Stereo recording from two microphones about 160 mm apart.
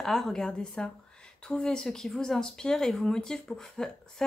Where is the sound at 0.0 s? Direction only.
Centre (ahead or behind).